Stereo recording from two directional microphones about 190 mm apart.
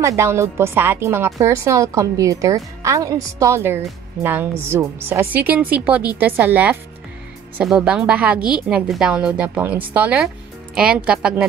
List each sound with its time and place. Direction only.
0.0 s a woman's voice: 15° right (ahead or behind)